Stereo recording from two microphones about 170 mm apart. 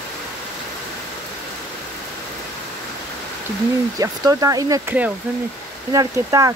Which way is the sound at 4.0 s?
20° right (ahead or behind).